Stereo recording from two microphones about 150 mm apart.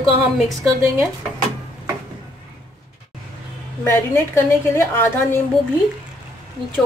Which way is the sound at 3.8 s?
15° left (ahead or behind).